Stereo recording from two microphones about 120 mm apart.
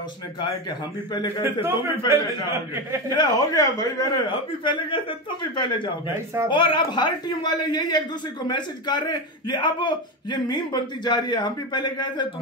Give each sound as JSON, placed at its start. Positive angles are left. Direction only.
{"t": 0.4, "sound": "speech", "side_deg": 35}
{"t": 1.4, "sound": "a man's voice", "side_deg": -20}
{"t": 3.1, "sound": "speech", "side_deg": 35}
{"t": 4.3, "sound": "speech", "side_deg": 45}
{"t": 6.1, "sound": "a man's voice", "side_deg": -25}
{"t": 6.5, "sound": "speech", "side_deg": 45}